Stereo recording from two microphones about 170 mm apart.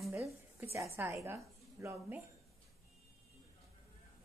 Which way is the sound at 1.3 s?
15° right (ahead or behind).